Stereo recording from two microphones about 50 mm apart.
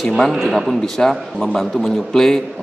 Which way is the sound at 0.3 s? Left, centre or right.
Centre.